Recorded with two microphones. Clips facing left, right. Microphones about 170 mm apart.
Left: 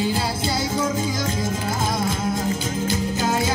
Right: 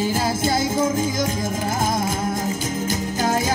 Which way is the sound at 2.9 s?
45° right (ahead or behind).